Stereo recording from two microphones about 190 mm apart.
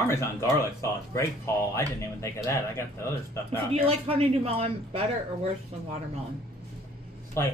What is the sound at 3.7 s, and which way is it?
Speech, 30° right (ahead or behind).